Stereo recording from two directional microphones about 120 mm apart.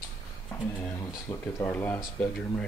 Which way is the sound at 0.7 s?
15° left (ahead or behind).